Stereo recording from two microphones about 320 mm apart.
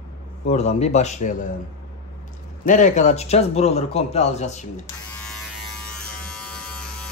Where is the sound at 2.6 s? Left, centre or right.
Left.